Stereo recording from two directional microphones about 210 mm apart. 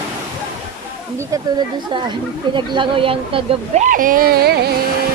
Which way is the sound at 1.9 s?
20° right (ahead or behind).